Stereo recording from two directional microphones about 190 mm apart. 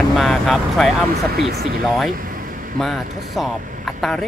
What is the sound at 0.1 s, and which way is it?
Speech, centre (ahead or behind).